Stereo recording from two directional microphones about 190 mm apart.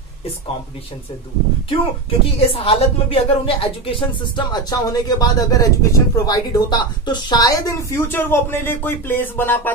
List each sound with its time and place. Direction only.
1.7 s a woman's voice: 30° left (ahead or behind); by 9.6 s 10° left (ahead or behind)